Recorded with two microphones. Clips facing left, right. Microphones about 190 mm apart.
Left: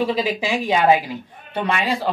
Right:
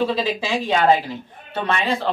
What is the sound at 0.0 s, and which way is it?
Speech, 15° left (ahead or behind).